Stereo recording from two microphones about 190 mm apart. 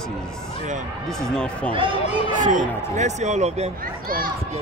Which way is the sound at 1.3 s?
5° left (ahead or behind).